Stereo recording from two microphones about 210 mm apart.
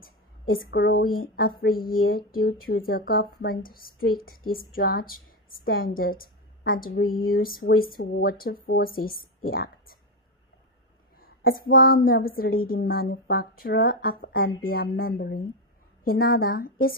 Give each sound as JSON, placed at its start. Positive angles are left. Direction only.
{"t": 0.0, "sound": "a woman's voice", "side_deg": 45}
{"t": 11.1, "sound": "a woman's voice", "side_deg": 45}